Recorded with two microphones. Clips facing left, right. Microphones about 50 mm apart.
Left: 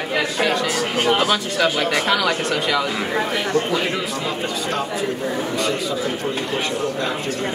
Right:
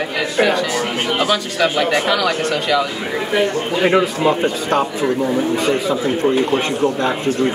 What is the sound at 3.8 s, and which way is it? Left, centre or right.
A man's voice, right.